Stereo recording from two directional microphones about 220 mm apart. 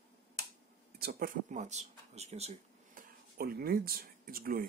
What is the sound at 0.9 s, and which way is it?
Speech, 45° right (ahead or behind).